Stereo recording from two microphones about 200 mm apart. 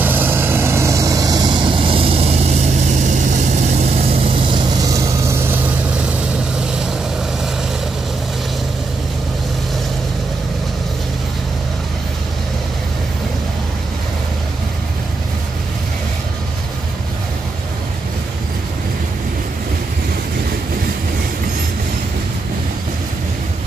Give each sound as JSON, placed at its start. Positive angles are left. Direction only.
{"t": 0.0, "sound": "vehicle", "side_deg": -10}